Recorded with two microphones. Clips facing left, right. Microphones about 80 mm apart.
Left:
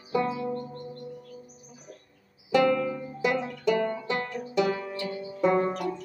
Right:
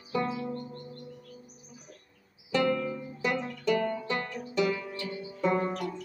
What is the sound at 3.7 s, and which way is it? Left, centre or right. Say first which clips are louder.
Music: left 2 dB; left.